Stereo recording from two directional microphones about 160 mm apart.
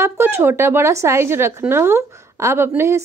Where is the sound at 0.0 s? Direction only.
15° right (ahead or behind).